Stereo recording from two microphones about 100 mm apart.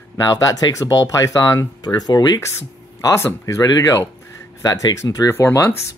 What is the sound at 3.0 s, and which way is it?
Speech, 30° left (ahead or behind).